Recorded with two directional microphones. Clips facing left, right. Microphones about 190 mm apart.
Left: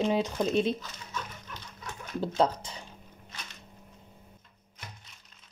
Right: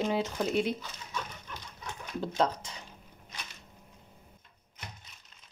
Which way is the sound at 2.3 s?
30° left (ahead or behind).